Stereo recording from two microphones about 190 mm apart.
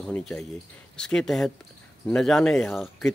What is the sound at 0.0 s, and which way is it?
Speech, centre (ahead or behind).